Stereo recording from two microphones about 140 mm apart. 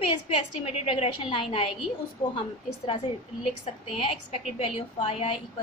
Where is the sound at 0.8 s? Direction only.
45° left (ahead or behind).